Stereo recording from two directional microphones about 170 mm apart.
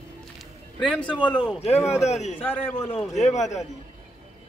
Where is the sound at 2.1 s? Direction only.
40° left (ahead or behind).